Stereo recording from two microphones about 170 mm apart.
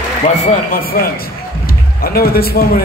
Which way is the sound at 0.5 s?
55° left (ahead or behind).